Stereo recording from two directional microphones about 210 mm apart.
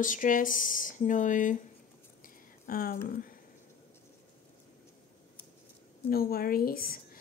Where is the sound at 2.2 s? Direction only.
45° left (ahead or behind).